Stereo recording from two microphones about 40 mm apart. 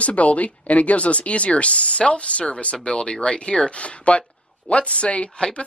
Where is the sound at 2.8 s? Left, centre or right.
Left.